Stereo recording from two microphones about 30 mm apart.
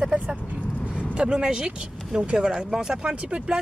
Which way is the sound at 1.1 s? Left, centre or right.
Right.